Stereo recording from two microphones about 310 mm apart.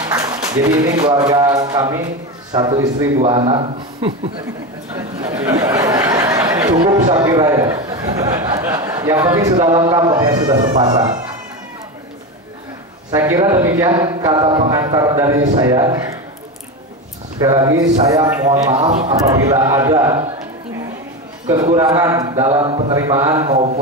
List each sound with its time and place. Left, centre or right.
0.0 s speech: centre
5.5 s speech: centre
13.1 s speech: centre
17.4 s speech: centre
21.5 s speech: centre